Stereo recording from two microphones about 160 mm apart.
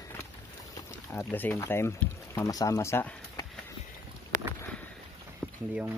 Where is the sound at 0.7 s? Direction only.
15° left (ahead or behind).